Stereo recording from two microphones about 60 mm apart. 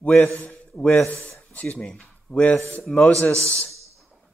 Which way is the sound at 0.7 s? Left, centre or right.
Left.